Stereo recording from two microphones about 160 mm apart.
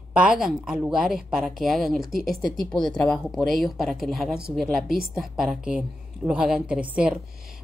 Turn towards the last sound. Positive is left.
turn(degrees=-5)  # may be behind; listen again after turning